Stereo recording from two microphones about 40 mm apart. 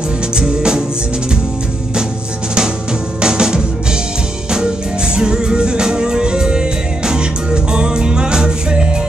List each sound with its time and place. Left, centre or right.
0.4 s music: right
3.2 s music: right
5.1 s music: centre